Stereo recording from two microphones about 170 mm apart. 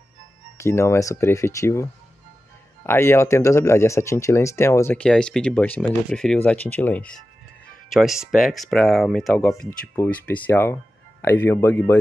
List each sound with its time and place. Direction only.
0.6 s speech: 15° left (ahead or behind)